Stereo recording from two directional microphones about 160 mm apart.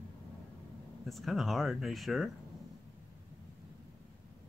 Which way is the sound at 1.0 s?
Centre (ahead or behind).